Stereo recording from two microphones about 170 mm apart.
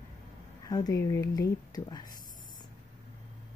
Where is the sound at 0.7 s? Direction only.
20° left (ahead or behind).